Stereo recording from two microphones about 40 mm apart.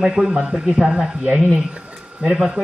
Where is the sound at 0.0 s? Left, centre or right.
Right.